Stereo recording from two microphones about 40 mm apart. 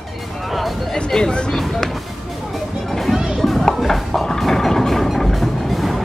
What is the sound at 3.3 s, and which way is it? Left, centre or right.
Children playing, centre.